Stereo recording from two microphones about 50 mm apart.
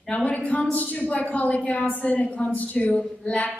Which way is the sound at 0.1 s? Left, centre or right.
Left.